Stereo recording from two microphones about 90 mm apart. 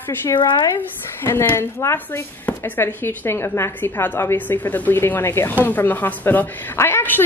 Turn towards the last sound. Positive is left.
turn(degrees=25)  # may be behind; listen again after turning